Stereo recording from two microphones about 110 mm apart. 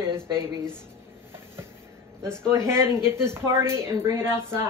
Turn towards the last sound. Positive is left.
turn(degrees=-20)  # may be behind; listen again after turning